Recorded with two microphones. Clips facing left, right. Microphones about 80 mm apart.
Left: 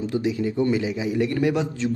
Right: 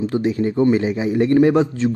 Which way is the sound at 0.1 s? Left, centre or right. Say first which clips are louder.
Right 5 dB; right.